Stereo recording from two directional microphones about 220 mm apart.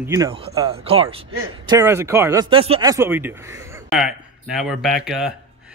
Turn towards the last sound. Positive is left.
turn(degrees=0)  # may be behind; listen again after turning